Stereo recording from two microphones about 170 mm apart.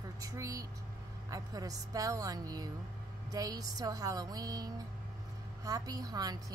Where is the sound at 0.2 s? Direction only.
20° right (ahead or behind).